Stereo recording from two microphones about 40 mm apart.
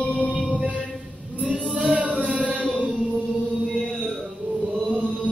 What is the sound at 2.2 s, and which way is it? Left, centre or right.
Music, right.